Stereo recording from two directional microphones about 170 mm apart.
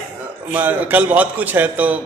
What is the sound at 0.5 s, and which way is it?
A man's voice, 10° right (ahead or behind).